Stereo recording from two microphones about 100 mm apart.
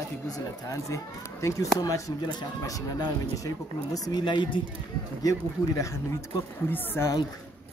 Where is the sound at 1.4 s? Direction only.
30° left (ahead or behind).